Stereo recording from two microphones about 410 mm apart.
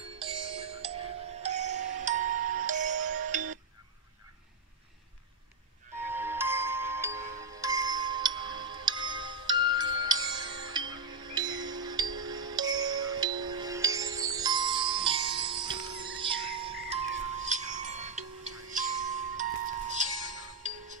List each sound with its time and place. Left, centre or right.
0.2 s music: centre
2.2 s music: right
2.6 s music: centre
6.0 s music: centre